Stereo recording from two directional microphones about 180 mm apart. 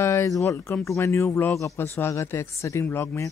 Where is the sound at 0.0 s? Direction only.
15° left (ahead or behind).